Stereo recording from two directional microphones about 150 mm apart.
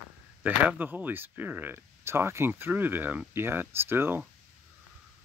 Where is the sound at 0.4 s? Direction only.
10° right (ahead or behind).